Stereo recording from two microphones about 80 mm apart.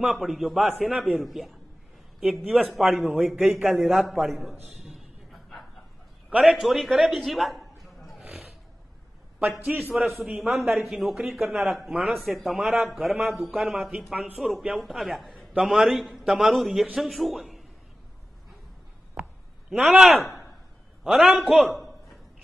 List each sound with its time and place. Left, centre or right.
0.0 s a man's voice: centre
5.3 s bow-wow: centre
6.4 s a man's voice: centre
9.4 s a man's voice: centre
9.9 s a man's voice: centre
19.2 s a sound: right
19.7 s a man's voice: centre